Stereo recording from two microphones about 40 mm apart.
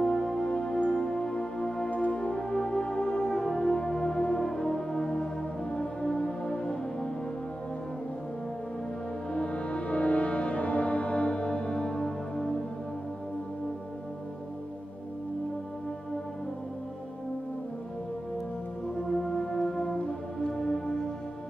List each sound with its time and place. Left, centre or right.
0.0 s music: centre
9.3 s music: left
19.0 s music: centre